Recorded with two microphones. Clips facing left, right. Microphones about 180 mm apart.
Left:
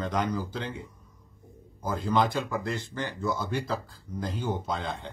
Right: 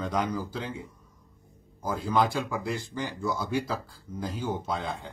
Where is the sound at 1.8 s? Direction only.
10° right (ahead or behind).